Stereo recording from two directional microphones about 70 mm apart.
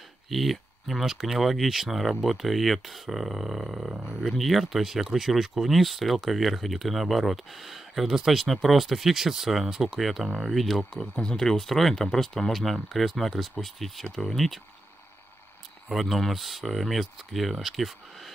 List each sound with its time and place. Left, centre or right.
0.3 s speech: centre
10.9 s speech: centre
15.9 s speech: centre